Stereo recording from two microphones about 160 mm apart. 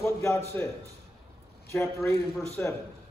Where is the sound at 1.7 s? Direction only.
15° left (ahead or behind).